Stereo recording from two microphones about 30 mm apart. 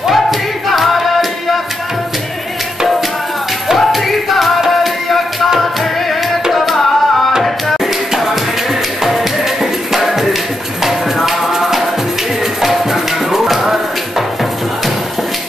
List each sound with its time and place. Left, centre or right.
0.1 s music: centre
3.7 s music: centre
6.5 s tabla: centre
7.7 s music: centre